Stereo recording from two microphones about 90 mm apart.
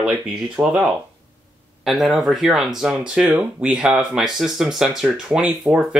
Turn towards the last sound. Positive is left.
turn(degrees=-15)  # may be behind; listen again after turning